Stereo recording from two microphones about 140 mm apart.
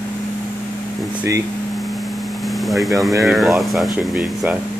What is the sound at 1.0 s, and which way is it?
Air conditioning, 10° right (ahead or behind).